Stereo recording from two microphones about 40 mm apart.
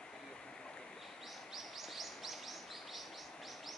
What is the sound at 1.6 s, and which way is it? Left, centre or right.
Bird, centre.